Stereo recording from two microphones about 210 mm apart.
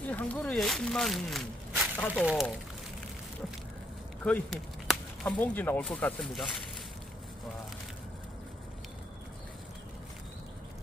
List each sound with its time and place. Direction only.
0.0 s speech: 5° left (ahead or behind)
4.2 s speech: 5° left (ahead or behind)